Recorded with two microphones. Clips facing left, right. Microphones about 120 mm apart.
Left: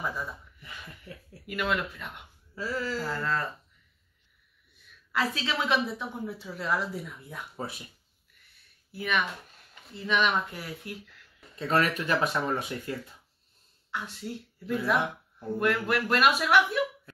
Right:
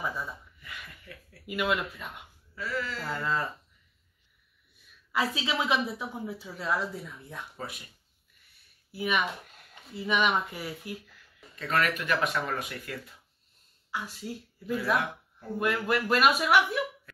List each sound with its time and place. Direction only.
0.0 s speech: centre (ahead or behind)
0.7 s a sound: 30° left (ahead or behind)
1.5 s speech: 5° right (ahead or behind)
2.5 s speech: 30° left (ahead or behind)
3.0 s speech: centre (ahead or behind)
5.1 s speech: 10° right (ahead or behind)
8.9 s speech: 10° right (ahead or behind)
11.5 s speech: 30° left (ahead or behind)
13.8 s a woman's voice: 5° right (ahead or behind)